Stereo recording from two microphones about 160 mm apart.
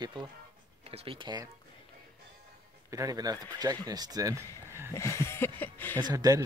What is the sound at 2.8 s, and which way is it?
Speech, 20° right (ahead or behind).